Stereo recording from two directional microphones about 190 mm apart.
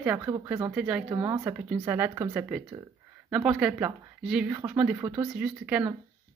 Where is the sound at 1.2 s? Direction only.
15° right (ahead or behind).